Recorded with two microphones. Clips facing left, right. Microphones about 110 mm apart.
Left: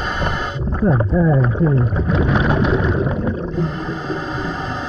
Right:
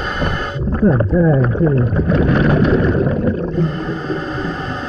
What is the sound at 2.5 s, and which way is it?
Speech, 5° left (ahead or behind).